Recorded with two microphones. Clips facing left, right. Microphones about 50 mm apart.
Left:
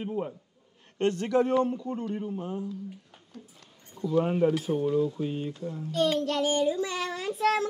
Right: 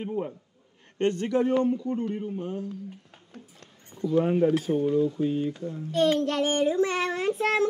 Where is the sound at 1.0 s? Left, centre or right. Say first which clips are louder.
Right 1 dB; right.